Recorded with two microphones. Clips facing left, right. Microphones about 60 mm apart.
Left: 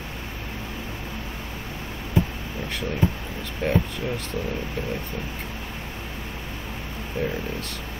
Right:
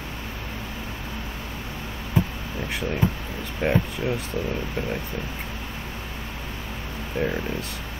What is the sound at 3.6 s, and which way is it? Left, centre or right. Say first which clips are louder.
Speech: right 2 dB; right.